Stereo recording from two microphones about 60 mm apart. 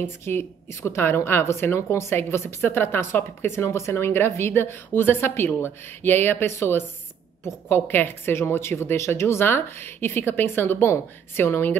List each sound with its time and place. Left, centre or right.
0.0 s a woman's voice: left